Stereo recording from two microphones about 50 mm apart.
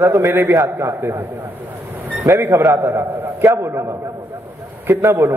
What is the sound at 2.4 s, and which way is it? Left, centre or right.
A man's voice, right.